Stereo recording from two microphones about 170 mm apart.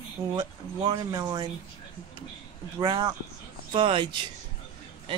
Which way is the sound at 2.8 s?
20° right (ahead or behind).